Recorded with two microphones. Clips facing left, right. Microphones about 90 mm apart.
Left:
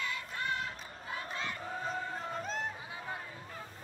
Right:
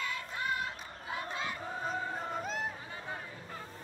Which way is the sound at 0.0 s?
10° right (ahead or behind).